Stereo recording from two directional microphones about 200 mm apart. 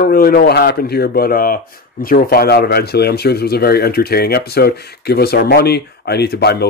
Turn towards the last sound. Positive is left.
turn(degrees=55)  # may be behind; listen again after turning